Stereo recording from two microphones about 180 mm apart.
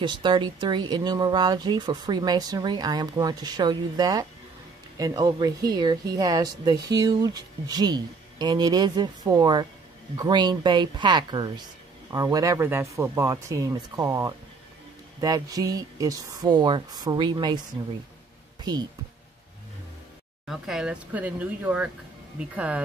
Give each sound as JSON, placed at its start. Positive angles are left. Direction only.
{"t": 0.0, "sound": "speech", "side_deg": -25}
{"t": 20.4, "sound": "speech", "side_deg": 0}